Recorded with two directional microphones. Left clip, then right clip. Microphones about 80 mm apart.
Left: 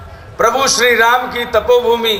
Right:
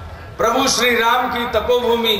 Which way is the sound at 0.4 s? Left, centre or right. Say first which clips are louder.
Left 4 dB; left.